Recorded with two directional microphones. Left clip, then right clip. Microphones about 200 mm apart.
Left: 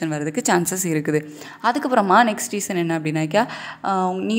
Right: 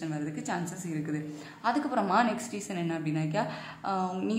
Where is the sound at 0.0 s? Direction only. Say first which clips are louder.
Left 12 dB; 45° left (ahead or behind).